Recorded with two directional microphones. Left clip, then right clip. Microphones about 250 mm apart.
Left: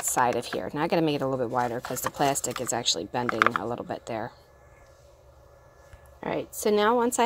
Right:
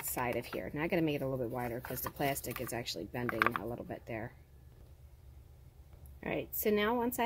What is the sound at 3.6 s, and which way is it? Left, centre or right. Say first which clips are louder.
Speech: left 10 dB; left.